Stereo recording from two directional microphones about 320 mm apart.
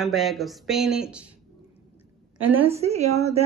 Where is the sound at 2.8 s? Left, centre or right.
Centre.